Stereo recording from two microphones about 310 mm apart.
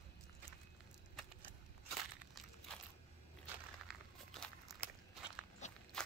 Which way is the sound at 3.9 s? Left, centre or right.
Centre.